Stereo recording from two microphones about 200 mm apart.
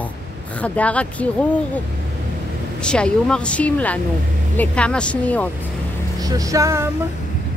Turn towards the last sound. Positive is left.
turn(degrees=-15)  # may be behind; listen again after turning